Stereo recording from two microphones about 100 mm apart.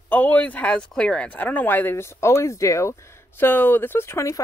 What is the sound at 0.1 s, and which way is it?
Speech, 15° left (ahead or behind).